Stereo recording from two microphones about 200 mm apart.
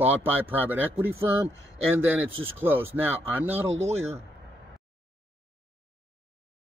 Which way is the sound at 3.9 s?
30° right (ahead or behind).